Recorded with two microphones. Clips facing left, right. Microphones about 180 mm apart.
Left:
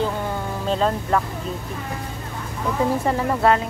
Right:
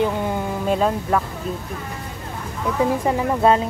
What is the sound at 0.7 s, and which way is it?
Speech, 10° right (ahead or behind).